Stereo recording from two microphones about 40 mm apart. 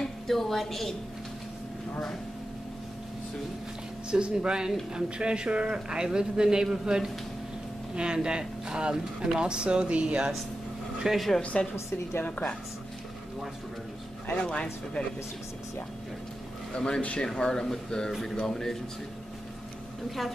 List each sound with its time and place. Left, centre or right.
0.0 s a woman's voice: centre
4.1 s a man's voice: right
11.1 s speech: centre
12.3 s speech: left
14.3 s speech: left
16.7 s speech: left